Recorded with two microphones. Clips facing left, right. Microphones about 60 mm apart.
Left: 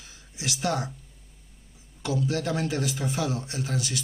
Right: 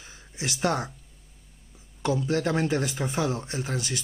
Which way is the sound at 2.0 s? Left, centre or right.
Right.